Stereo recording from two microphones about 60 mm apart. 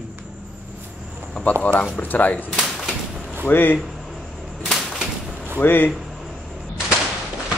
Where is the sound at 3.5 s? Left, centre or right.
Left.